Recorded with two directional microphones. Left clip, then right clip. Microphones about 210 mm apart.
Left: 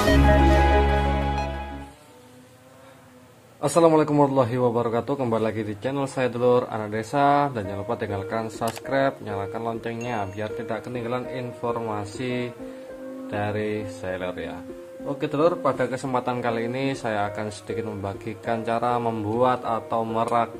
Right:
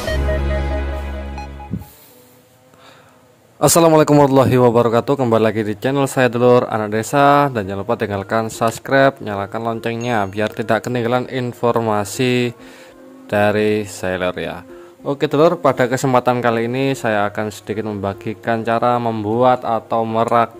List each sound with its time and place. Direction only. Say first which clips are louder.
3.6 s a man's voice: right 7 dB; 50° right (ahead or behind)